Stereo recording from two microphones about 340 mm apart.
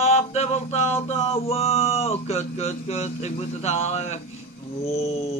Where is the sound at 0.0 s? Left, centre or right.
Centre.